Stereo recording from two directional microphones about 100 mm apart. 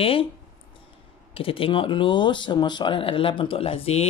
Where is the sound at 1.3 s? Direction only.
65° left (ahead or behind).